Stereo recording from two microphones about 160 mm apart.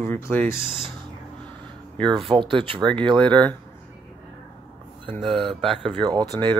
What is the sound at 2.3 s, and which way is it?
Speech, 30° right (ahead or behind).